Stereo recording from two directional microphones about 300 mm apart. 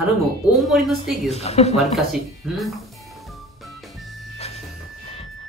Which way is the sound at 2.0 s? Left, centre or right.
Centre.